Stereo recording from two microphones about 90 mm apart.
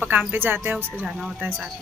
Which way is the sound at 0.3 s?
25° right (ahead or behind).